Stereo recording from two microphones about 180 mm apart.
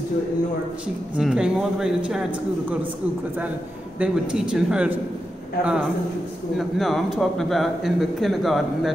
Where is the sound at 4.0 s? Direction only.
5° right (ahead or behind).